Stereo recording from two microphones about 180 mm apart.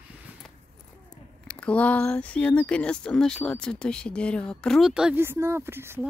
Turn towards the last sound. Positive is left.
turn(degrees=-15)  # may be behind; listen again after turning